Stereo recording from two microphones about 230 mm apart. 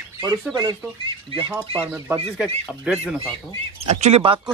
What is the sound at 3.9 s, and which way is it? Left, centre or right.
Speech, right.